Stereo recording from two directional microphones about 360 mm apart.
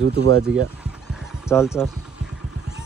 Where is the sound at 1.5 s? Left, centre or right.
Centre.